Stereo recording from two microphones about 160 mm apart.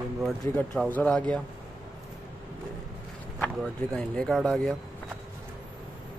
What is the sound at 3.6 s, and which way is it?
Speech, 5° left (ahead or behind).